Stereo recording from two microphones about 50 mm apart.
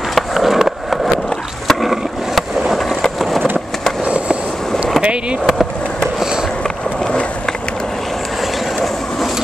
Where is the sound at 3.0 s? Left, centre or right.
Centre.